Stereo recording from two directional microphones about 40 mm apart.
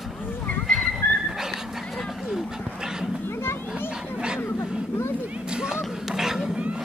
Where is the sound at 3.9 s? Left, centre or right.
Centre.